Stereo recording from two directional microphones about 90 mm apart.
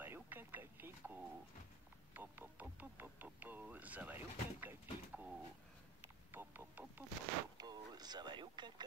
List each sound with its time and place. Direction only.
0.0 s a sound: 25° right (ahead or behind)
2.1 s speech: 20° right (ahead or behind)
6.3 s speech: 25° right (ahead or behind)
7.5 s speech: 45° right (ahead or behind)